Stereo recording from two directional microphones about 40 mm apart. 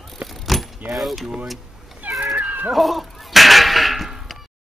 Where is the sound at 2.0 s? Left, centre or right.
Right.